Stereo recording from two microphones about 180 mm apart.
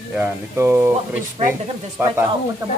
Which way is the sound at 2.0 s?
15° right (ahead or behind).